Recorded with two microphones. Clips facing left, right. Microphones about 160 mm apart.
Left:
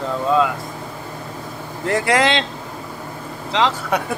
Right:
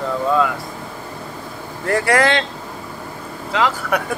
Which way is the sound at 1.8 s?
20° left (ahead or behind).